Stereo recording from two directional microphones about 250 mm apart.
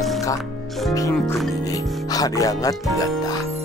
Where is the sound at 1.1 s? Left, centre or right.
Centre.